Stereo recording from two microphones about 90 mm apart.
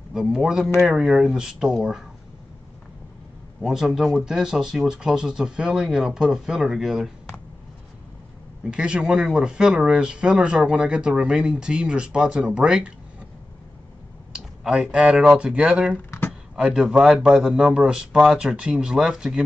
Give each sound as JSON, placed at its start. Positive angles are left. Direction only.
{"t": 0.1, "sound": "speech", "side_deg": -5}
{"t": 3.6, "sound": "speech", "side_deg": -5}
{"t": 8.6, "sound": "speech", "side_deg": -10}
{"t": 14.3, "sound": "speech", "side_deg": -10}
{"t": 16.1, "sound": "a sound", "side_deg": 25}
{"t": 16.5, "sound": "speech", "side_deg": -10}